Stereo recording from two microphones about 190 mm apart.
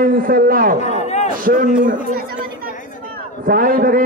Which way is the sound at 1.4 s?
45° right (ahead or behind).